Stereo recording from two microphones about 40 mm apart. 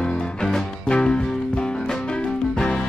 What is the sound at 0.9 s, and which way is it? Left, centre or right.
Music, left.